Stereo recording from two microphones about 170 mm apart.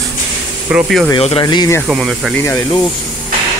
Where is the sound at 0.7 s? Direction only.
Centre (ahead or behind).